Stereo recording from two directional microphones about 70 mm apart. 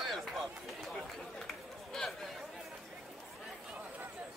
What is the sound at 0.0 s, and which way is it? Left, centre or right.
Run, centre.